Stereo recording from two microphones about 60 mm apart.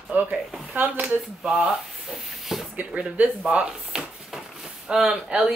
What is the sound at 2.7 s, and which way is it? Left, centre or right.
Speech, right.